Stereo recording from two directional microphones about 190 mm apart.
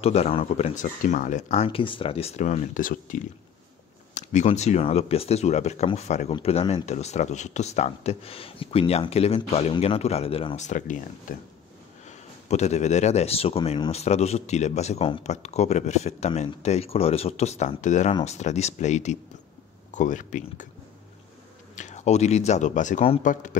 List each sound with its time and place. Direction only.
0.0 s speech: 30° left (ahead or behind)
12.4 s speech: 35° left (ahead or behind)
21.7 s speech: 40° left (ahead or behind)